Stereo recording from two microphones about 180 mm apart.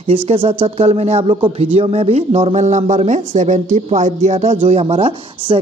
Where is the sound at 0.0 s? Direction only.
30° right (ahead or behind).